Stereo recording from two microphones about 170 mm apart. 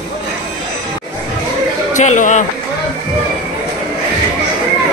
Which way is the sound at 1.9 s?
45° left (ahead or behind).